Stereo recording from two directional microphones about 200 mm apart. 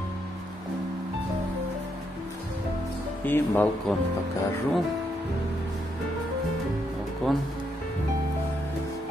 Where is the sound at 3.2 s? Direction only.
10° left (ahead or behind).